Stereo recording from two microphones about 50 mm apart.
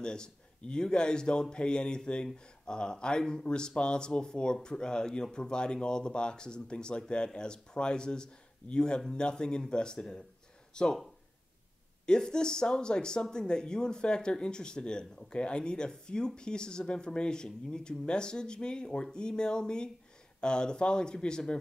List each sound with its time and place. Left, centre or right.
0.0 s speech: centre
12.1 s speech: centre